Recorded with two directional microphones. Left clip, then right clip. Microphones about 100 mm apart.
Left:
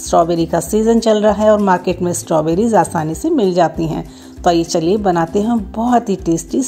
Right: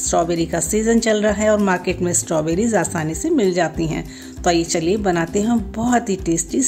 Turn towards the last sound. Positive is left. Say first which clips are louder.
# left 3 dB
turn(degrees=20)  # may be behind; listen again after turning